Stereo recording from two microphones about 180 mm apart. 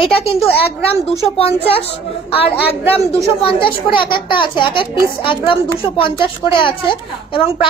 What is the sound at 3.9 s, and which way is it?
A woman's voice, 25° left (ahead or behind).